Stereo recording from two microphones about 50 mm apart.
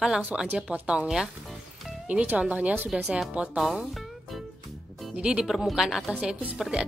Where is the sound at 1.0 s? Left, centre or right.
Centre.